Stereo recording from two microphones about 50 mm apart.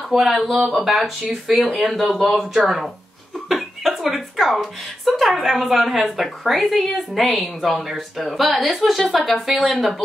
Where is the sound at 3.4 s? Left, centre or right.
Centre.